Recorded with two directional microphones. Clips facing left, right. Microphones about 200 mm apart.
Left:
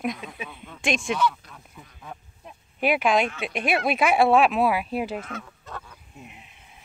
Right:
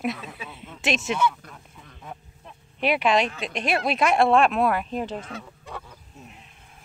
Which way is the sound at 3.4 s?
5° left (ahead or behind).